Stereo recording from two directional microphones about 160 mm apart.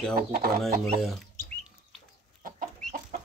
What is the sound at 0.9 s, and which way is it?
Speech, centre (ahead or behind).